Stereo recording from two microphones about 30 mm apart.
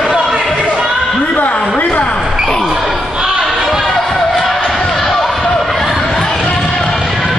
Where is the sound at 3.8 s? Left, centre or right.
Centre.